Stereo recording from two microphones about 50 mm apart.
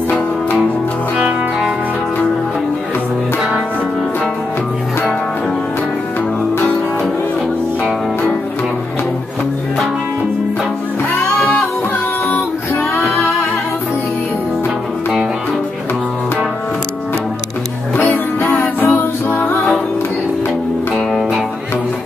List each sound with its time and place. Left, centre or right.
1.1 s music: centre
18.1 s music: left